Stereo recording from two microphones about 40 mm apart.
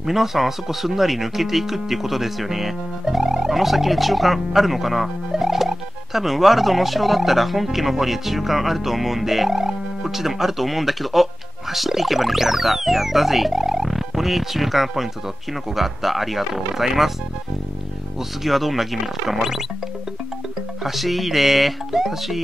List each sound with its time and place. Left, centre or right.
0.0 s speech: centre
18.4 s speech: centre
20.8 s speech: centre